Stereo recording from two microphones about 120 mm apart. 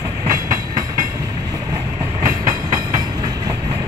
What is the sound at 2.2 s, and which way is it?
Train, 30° right (ahead or behind).